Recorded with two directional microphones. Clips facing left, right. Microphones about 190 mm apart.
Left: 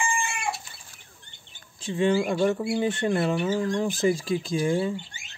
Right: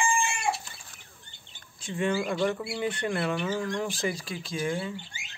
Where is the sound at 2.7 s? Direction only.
25° left (ahead or behind).